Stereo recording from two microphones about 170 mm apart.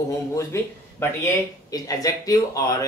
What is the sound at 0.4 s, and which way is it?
Speech, 15° left (ahead or behind).